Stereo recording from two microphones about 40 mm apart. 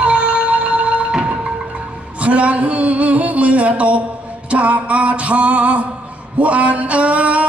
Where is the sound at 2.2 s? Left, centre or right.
Right.